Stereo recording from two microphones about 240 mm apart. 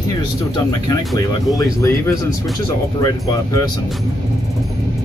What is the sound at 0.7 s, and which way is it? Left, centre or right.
Speech, centre.